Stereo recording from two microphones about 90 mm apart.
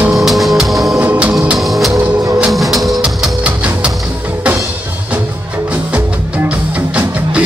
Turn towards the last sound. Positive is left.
turn(degrees=-15)  # may be behind; listen again after turning